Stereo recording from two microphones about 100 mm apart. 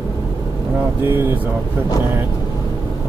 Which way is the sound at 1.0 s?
25° right (ahead or behind).